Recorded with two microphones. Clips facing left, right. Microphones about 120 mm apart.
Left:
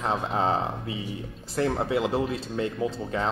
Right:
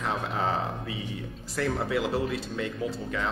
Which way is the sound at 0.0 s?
30° left (ahead or behind).